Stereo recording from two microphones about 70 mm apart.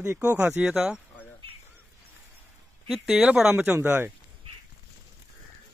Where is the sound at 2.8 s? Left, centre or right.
Centre.